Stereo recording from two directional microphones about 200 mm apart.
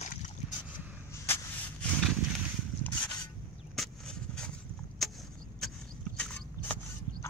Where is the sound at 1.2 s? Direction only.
10° left (ahead or behind).